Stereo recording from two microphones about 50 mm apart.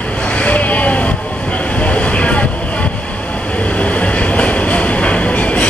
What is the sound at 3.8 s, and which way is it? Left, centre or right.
Train, left.